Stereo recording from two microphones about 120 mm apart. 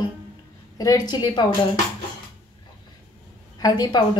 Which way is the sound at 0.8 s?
30° left (ahead or behind).